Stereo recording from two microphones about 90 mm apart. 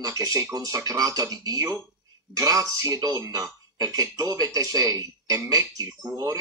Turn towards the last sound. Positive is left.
turn(degrees=-40)  # may be behind; listen again after turning